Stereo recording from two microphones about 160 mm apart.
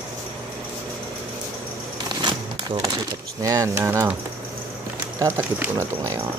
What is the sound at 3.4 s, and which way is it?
Speech, 20° right (ahead or behind).